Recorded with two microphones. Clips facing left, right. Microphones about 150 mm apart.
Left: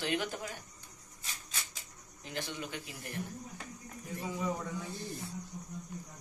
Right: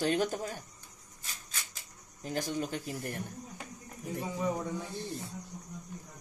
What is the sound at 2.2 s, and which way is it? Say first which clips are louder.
Speech: right 6 dB; 40° right (ahead or behind).